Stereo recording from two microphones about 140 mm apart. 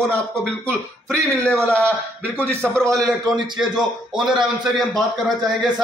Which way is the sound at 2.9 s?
Centre (ahead or behind).